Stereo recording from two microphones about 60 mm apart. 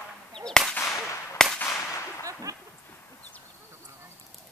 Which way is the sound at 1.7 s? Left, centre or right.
Left.